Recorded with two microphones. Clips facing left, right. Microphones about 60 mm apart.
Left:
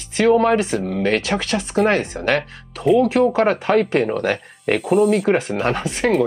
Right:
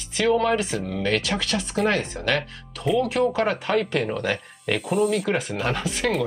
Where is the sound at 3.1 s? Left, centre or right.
Left.